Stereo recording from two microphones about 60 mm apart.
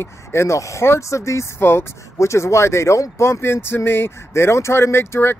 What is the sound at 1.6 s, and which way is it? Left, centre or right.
Speech, left.